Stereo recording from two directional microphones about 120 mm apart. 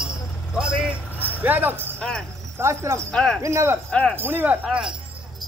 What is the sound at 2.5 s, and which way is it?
Speech, 25° right (ahead or behind).